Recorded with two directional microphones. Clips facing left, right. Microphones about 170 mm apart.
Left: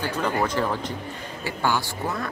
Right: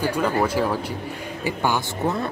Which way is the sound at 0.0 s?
10° right (ahead or behind).